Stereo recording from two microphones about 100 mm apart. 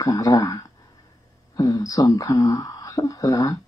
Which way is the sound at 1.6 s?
35° left (ahead or behind).